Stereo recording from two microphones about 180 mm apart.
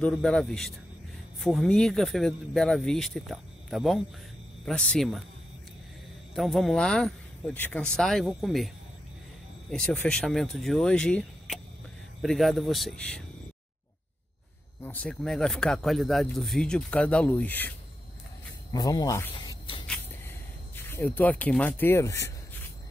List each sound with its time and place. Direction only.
0.0 s speech: 5° left (ahead or behind)
6.3 s speech: centre (ahead or behind)
14.8 s speech: 10° left (ahead or behind)
18.7 s speech: 20° left (ahead or behind)
19.3 s a sound: 30° left (ahead or behind)
19.9 s a sound: 10° left (ahead or behind)